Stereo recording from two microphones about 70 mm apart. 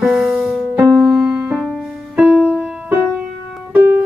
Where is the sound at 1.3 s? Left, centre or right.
Right.